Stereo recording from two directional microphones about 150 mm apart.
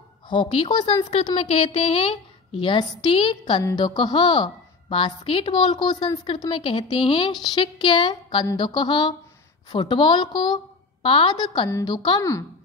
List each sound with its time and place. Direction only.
0.3 s a woman's voice: 35° left (ahead or behind)
1.3 s a woman's voice: 45° left (ahead or behind); by 12.4 s 20° left (ahead or behind)